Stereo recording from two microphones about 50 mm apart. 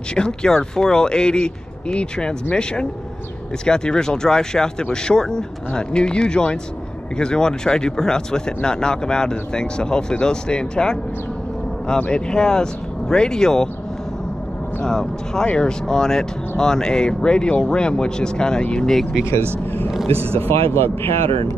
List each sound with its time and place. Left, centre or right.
0.1 s speech: centre
12.1 s speech: centre
14.9 s speech: centre
19.6 s speech: left